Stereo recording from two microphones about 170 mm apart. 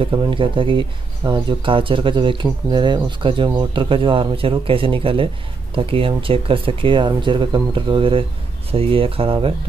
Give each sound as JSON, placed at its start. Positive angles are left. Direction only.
{"t": 0.0, "sound": "speech", "side_deg": -30}